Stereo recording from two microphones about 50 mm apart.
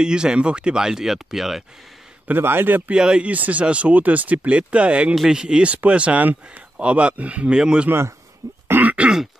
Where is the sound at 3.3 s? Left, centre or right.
Right.